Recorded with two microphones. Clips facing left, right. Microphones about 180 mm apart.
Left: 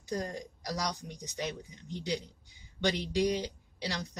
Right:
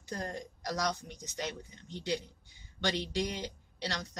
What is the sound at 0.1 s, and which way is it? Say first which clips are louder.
Speech: left 3 dB; 15° left (ahead or behind).